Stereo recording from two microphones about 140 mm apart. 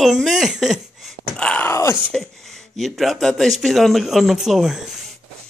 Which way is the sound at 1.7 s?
20° left (ahead or behind).